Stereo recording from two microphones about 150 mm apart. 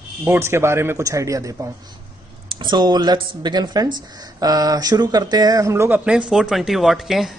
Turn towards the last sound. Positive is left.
turn(degrees=0)  # may be behind; listen again after turning